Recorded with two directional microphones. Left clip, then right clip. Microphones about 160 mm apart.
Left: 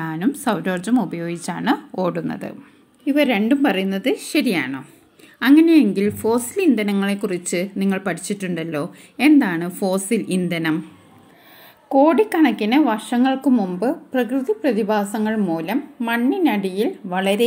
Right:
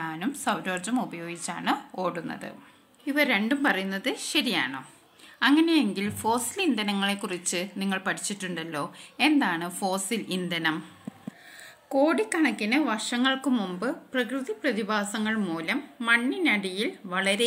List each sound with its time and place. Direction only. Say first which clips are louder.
0.0 s speech: left 7 dB; 35° left (ahead or behind)
3.1 s a woman's voice: left 7 dB; 20° left (ahead or behind)
11.9 s speech: left 9 dB; centre (ahead or behind)